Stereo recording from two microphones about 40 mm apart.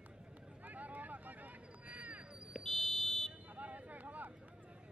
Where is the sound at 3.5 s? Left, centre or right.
Right.